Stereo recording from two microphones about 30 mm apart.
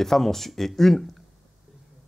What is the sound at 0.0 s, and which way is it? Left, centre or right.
Speech, centre.